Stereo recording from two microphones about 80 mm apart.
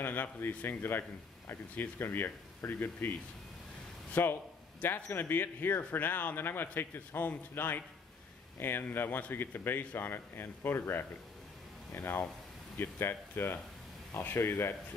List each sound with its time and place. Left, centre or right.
0.0 s speech: left